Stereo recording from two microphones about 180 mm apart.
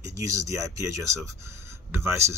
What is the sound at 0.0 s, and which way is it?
Speech, 15° right (ahead or behind).